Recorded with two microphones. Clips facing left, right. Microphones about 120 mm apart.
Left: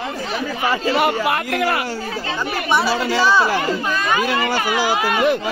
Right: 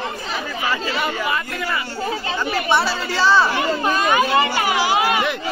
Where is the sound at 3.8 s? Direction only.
20° right (ahead or behind).